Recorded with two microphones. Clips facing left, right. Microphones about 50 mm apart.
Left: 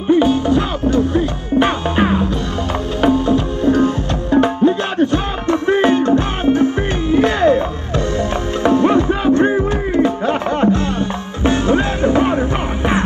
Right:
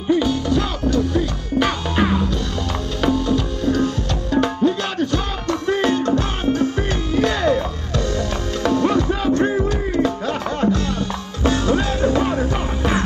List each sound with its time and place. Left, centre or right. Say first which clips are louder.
0.1 s music: left 5 dB; left